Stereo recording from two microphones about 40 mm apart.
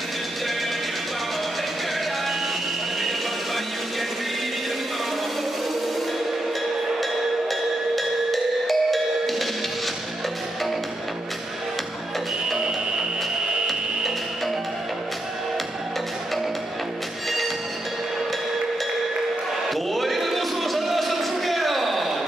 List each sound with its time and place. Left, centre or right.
7.0 s music: centre
12.5 s music: centre
19.7 s a sound: centre